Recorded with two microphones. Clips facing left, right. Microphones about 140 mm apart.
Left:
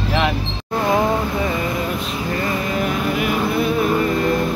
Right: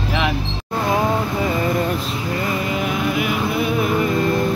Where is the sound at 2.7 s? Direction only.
5° right (ahead or behind).